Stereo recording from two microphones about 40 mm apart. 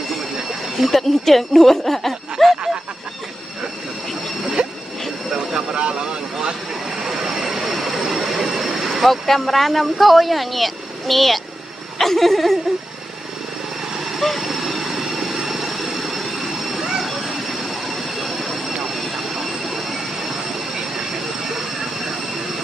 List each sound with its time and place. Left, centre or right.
0.7 s speech: centre
2.3 s snicker: centre
5.8 s speech: right
7.0 s train: centre
12.0 s speech: centre
13.9 s vehicle: centre
20.9 s train: centre